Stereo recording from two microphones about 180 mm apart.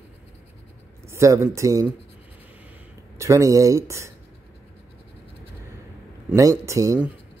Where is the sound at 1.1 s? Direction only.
15° right (ahead or behind).